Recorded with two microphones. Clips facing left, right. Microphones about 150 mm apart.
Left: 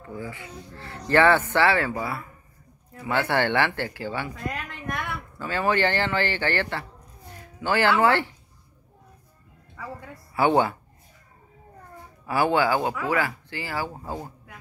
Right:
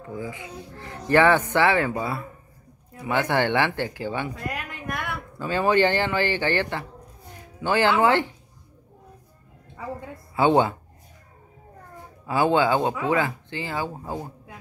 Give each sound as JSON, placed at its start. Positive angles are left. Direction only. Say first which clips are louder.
{"t": 0.0, "sound": "speech", "louder": "right 2 dB", "side_deg": -15}
{"t": 4.5, "sound": "a sound", "louder": "even", "side_deg": -10}
{"t": 5.4, "sound": "speech", "louder": "right 3 dB", "side_deg": -15}
{"t": 9.8, "sound": "a woman's voice", "louder": "right 4 dB", "side_deg": -25}
{"t": 12.3, "sound": "speech", "louder": "right 2 dB", "side_deg": -20}